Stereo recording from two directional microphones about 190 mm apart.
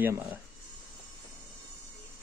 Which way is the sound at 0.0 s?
10° right (ahead or behind).